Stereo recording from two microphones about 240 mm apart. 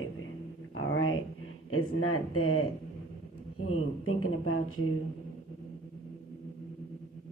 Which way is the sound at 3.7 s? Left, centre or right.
Left.